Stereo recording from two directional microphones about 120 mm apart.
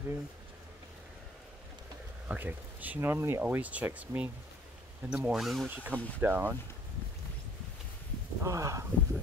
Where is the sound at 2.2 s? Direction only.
15° right (ahead or behind).